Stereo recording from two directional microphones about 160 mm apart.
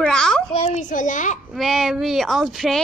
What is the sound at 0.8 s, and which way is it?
Speech, 50° left (ahead or behind).